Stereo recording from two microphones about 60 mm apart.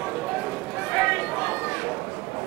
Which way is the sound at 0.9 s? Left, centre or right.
Centre.